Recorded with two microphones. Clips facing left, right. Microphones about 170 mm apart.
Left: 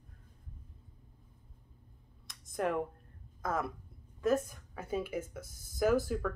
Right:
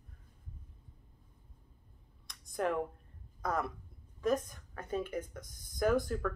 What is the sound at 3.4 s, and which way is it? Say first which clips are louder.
Speech: even; centre (ahead or behind).